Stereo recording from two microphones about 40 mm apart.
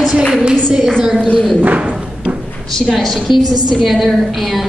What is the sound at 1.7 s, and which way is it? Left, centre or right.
Music, right.